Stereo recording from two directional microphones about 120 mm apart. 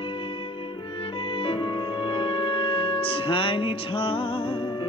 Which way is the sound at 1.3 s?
45° left (ahead or behind).